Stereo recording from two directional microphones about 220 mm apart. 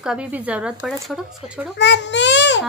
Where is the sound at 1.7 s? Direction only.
55° left (ahead or behind).